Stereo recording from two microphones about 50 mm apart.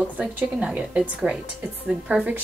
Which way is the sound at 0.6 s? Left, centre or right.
Right.